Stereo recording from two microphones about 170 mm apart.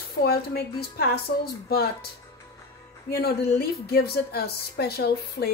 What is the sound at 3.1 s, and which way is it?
Speech, 65° left (ahead or behind).